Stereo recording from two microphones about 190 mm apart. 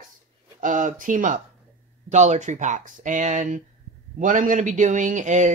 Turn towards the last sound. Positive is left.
turn(degrees=-40)  # may be behind; listen again after turning